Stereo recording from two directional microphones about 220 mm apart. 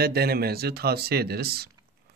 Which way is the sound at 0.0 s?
45° right (ahead or behind).